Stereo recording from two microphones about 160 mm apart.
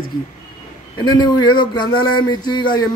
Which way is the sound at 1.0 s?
25° left (ahead or behind).